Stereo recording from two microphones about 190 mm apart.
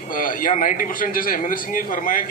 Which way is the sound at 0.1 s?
45° left (ahead or behind).